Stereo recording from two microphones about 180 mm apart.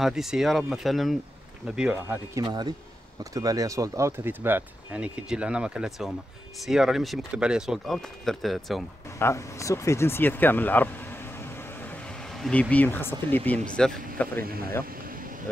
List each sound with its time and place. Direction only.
0.0 s speech: centre (ahead or behind)
2.3 s speech: 25° right (ahead or behind); by 8.8 s centre (ahead or behind)
9.2 s speech: 15° left (ahead or behind)
12.4 s speech: 5° left (ahead or behind)
14.4 s speech: 55° right (ahead or behind)